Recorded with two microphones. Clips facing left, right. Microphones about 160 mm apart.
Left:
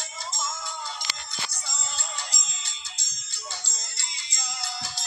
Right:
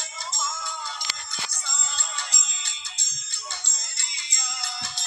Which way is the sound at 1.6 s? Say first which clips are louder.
Even; 40° left (ahead or behind).